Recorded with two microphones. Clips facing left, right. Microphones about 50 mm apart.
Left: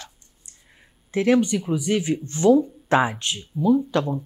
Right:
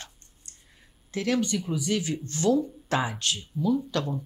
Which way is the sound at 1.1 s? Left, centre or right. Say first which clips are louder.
Left 7 dB; left.